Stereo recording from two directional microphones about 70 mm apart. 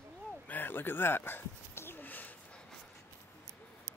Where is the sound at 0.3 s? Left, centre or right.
Left.